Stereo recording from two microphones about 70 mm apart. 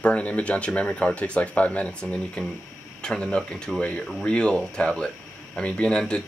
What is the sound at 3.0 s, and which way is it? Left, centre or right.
Speech, centre.